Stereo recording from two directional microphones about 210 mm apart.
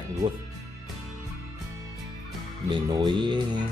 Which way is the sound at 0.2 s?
30° right (ahead or behind).